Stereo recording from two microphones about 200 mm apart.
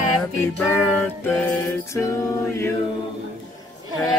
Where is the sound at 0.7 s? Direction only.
10° left (ahead or behind).